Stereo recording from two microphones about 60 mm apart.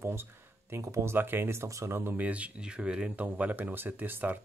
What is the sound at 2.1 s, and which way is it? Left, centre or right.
Speech, right.